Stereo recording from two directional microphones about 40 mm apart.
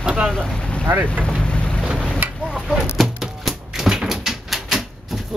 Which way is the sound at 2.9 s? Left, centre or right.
Centre.